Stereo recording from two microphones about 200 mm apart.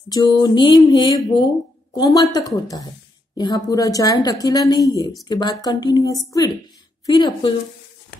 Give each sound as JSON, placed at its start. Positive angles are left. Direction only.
{"t": 0.1, "sound": "speech", "side_deg": 20}